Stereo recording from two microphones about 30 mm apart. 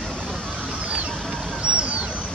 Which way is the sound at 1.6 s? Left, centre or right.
Right.